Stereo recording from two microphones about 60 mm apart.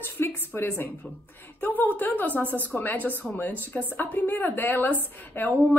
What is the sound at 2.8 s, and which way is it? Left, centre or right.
A woman's voice, left.